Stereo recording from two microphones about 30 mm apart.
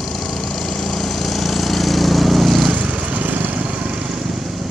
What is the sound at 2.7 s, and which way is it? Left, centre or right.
Vehicle, right.